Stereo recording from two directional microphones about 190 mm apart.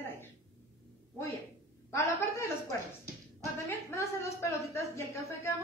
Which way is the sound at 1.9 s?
15° left (ahead or behind).